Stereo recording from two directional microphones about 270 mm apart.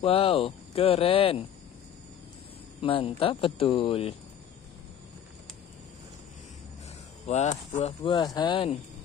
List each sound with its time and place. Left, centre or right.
0.0 s speech: left
2.8 s speech: centre
7.2 s speech: left